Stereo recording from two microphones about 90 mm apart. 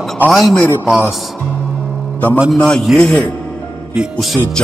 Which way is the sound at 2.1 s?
15° left (ahead or behind).